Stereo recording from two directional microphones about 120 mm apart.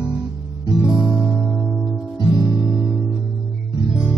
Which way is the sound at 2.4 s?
5° right (ahead or behind).